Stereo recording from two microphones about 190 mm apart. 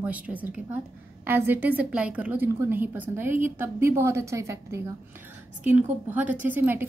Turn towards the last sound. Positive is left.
turn(degrees=-10)  # may be behind; listen again after turning